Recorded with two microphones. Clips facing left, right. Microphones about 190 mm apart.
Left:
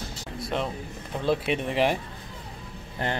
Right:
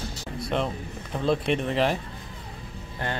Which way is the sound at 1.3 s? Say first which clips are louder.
Right 1 dB; 10° left (ahead or behind).